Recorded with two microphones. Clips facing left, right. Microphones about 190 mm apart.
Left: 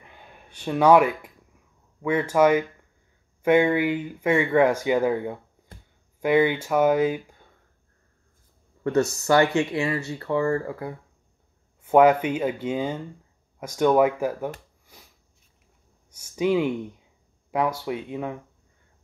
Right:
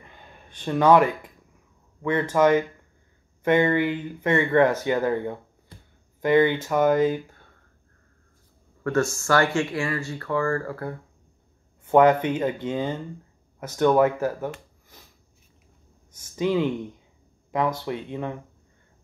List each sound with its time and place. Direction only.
0.0 s a sound: 10° left (ahead or behind)
2.0 s speech: 10° left (ahead or behind)
8.8 s speech: 20° left (ahead or behind)
11.8 s speech: 10° left (ahead or behind)
14.9 s sniff: 10° left (ahead or behind)
16.1 s speech: 10° left (ahead or behind)